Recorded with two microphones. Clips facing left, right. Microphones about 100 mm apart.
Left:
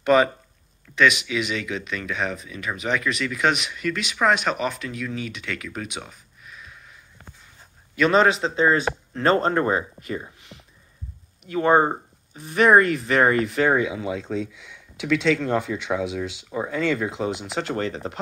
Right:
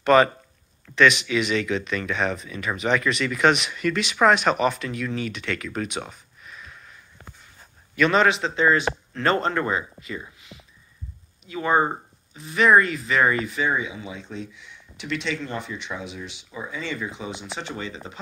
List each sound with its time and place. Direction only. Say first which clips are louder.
0.0 s speech: right 1 dB; 10° left (ahead or behind)
6.0 s a sound: right 3 dB; 5° left (ahead or behind)
7.9 s speech: left 1 dB; 30° left (ahead or behind); by 16.3 s 90° left
16.4 s speech: left 8 dB; 60° left (ahead or behind); by 17.7 s 90° left
17.7 s speech: left 7 dB; 60° left (ahead or behind)